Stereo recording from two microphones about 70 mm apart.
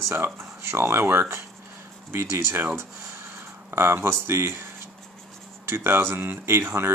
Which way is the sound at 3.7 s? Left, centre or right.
Right.